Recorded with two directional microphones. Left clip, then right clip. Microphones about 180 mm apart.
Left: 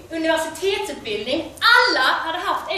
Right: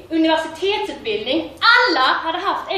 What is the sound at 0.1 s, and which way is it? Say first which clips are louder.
A woman's voice: right 3 dB; 5° left (ahead or behind).